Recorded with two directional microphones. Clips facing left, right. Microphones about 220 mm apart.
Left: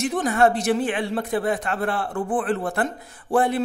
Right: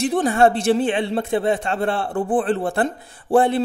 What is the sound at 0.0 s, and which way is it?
Speech, 30° right (ahead or behind).